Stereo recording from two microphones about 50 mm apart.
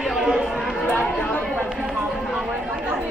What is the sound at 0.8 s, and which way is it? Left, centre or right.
Chatter, left.